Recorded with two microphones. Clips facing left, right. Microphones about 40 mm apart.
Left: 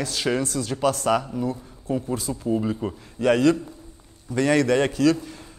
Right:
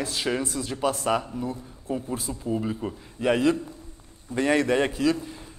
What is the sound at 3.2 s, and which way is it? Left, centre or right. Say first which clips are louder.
A man's voice: left 3 dB; right.